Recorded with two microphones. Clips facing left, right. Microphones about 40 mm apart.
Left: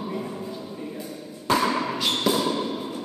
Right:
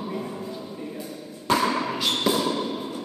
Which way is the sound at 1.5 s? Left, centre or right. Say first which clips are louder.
Even; centre.